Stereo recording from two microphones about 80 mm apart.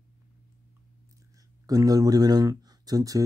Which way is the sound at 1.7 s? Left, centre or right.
Right.